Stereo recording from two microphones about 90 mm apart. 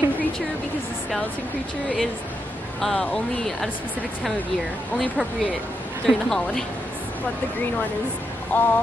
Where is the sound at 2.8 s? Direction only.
10° left (ahead or behind).